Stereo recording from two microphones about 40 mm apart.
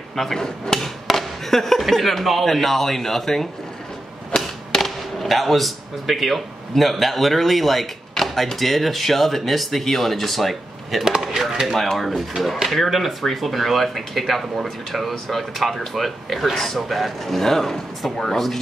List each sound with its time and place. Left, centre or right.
0.1 s speech: centre
4.7 s speech: centre
11.1 s a sound: centre
11.6 s speech: centre